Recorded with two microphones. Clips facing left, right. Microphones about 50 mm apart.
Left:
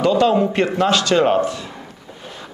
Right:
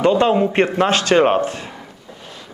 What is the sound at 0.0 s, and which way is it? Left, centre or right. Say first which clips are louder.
Speech: right 1 dB; right.